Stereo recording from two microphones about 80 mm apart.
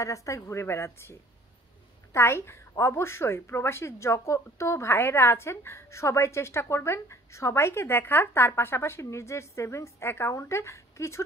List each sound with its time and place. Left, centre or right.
0.0 s a woman's voice: left
2.1 s a woman's voice: left